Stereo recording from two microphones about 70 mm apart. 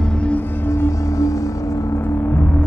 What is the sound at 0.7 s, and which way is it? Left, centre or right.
Music, left.